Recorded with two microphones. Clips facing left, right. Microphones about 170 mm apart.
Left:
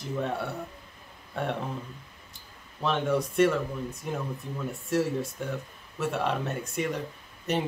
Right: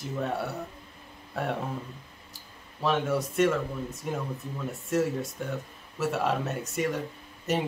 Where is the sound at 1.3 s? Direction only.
Centre (ahead or behind).